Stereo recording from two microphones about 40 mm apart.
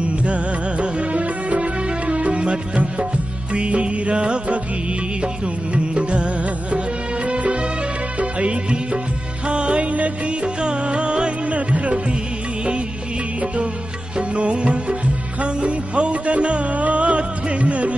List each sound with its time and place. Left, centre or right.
0.0 s music: right
5.9 s music: right
14.1 s music: right